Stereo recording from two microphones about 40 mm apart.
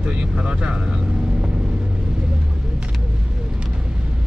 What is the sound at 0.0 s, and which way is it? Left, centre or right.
Speech, right.